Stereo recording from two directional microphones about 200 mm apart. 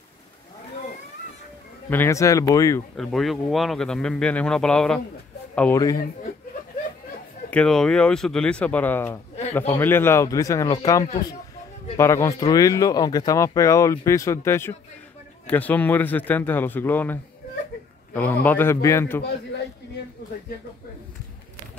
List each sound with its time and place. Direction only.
1.9 s speech: 10° left (ahead or behind)
3.0 s a man's voice: centre (ahead or behind); by 6.0 s 15° left (ahead or behind)
7.5 s a man's voice: 5° left (ahead or behind)
12.0 s speech: 15° left (ahead or behind)